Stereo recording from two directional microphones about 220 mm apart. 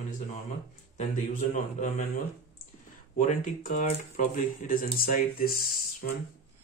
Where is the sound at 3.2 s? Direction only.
35° left (ahead or behind).